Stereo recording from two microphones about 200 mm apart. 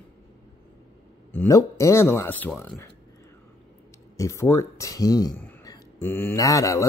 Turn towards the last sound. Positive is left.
turn(degrees=15)  # may be behind; listen again after turning